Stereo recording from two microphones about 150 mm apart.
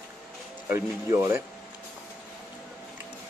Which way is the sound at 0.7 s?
20° right (ahead or behind).